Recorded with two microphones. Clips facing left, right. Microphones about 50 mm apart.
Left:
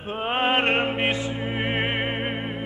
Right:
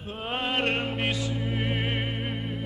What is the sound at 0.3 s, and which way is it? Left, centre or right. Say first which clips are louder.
Music: left 6 dB; left.